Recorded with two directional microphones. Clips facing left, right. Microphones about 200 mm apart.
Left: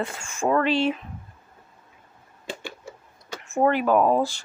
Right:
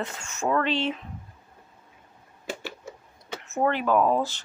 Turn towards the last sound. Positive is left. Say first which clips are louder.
# left 3 dB
turn(degrees=10)  # may be behind; listen again after turning